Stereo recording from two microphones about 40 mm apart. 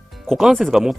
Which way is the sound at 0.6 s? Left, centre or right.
Centre.